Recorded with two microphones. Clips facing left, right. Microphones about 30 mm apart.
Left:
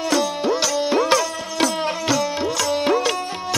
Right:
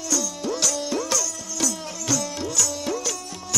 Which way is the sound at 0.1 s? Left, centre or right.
Left.